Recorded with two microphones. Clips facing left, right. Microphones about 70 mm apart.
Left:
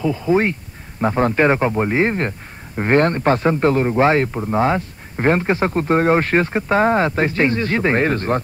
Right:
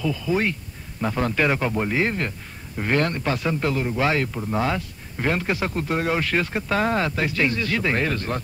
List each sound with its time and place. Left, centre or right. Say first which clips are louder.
0.0 s speech: left 6 dB; left